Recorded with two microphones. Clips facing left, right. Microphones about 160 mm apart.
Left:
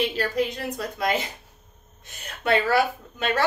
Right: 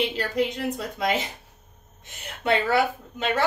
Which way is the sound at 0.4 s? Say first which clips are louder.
Right 4 dB; 20° right (ahead or behind).